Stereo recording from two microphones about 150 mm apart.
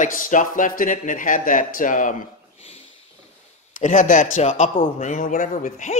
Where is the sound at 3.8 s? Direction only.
60° left (ahead or behind).